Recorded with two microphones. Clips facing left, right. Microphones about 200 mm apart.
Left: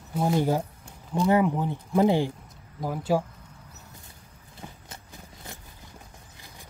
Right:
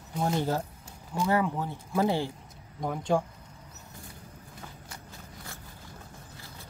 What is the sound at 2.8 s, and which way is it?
Speech, 5° left (ahead or behind).